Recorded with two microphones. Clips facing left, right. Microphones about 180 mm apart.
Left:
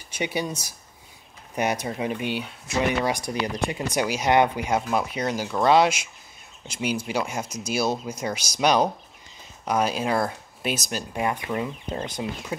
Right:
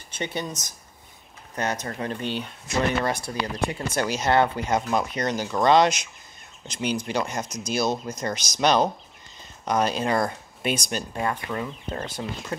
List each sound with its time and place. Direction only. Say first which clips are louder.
0.1 s speech: left 3 dB; 10° left (ahead or behind)
11.1 s speech: left 3 dB; 15° left (ahead or behind)